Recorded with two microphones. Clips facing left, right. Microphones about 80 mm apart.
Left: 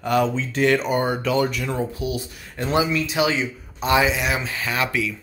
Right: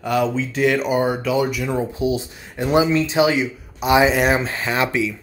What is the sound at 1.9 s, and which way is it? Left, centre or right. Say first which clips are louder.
A man's voice: right 6 dB; right.